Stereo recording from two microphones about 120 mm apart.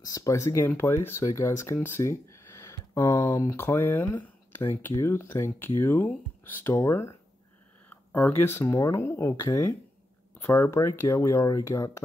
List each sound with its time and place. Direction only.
0.0 s speech: 30° left (ahead or behind)